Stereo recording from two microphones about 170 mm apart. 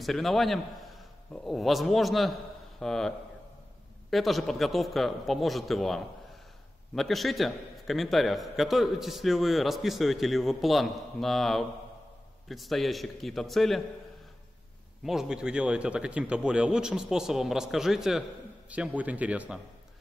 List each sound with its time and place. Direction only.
0.0 s a man's voice: centre (ahead or behind)
15.0 s a man's voice: 5° right (ahead or behind)